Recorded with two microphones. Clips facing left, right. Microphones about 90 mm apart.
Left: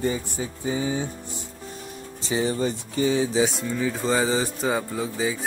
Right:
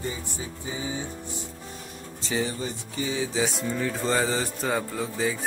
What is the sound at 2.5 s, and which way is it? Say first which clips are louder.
Speech: left 7 dB; 45° left (ahead or behind).